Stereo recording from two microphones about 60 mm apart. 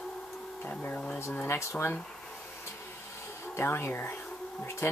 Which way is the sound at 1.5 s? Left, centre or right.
Left.